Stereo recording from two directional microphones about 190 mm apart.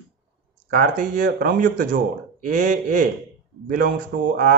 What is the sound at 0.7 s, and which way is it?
Speech, 45° right (ahead or behind).